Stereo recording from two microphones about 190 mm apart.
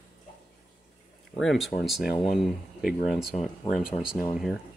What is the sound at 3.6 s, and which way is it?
Speech, 20° left (ahead or behind).